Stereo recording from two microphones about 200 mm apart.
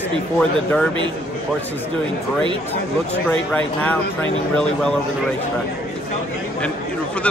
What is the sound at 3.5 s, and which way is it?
Speech, 5° left (ahead or behind).